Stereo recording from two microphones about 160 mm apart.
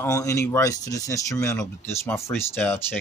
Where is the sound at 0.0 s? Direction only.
20° left (ahead or behind).